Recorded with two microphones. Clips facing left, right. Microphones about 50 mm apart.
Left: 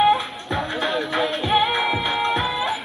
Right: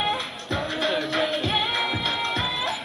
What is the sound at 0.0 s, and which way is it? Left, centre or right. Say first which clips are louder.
Music: left 9 dB; centre.